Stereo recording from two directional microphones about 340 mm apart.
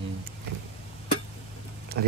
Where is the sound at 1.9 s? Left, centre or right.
Right.